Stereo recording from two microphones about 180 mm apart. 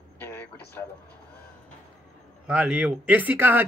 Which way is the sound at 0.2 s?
10° left (ahead or behind).